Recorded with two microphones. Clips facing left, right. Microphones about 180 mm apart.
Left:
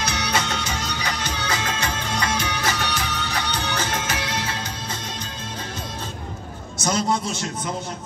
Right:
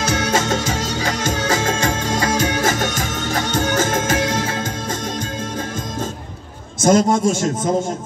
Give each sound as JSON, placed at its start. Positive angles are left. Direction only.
{"t": 0.0, "sound": "music", "side_deg": -50}
{"t": 6.8, "sound": "a man's voice", "side_deg": -50}